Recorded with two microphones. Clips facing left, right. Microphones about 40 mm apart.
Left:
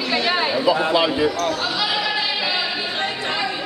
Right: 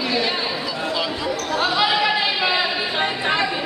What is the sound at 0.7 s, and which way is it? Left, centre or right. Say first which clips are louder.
Speech: left 7 dB; left.